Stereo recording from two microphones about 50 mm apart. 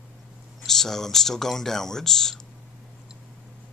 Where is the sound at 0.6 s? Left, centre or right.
Centre.